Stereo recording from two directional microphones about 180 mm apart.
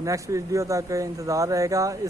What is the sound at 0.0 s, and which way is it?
Speech, 20° right (ahead or behind).